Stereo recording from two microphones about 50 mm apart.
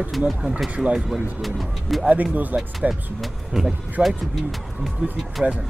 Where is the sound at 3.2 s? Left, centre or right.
Centre.